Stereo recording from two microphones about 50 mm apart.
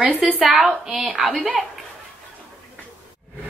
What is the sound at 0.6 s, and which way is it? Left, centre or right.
Speech, centre.